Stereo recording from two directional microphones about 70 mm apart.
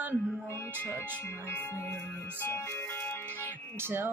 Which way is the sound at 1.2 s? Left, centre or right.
Left.